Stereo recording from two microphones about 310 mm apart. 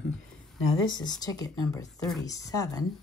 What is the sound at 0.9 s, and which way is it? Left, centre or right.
Speech, centre.